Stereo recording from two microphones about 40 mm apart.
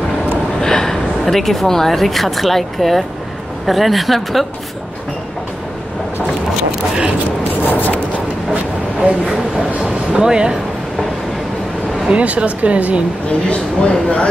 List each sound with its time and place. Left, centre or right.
0.6 s a sound: centre
1.2 s speech: centre
7.6 s a sound: left
10.1 s speech: right
12.1 s speech: right
13.5 s a man's voice: left